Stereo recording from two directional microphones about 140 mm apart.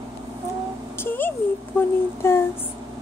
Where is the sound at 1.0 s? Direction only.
15° left (ahead or behind).